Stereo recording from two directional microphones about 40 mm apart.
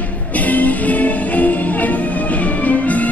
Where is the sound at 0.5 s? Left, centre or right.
Left.